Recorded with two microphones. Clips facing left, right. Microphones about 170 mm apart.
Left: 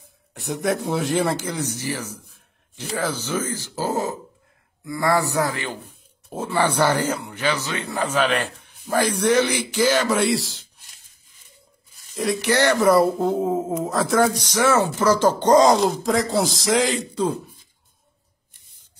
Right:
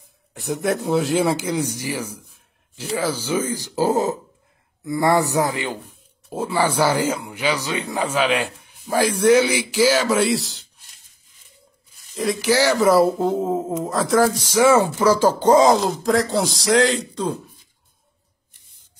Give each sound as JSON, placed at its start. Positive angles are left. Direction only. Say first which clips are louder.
{"t": 0.3, "sound": "speech", "louder": "right 1 dB", "side_deg": 0}
{"t": 12.1, "sound": "speech", "louder": "right 2 dB", "side_deg": 0}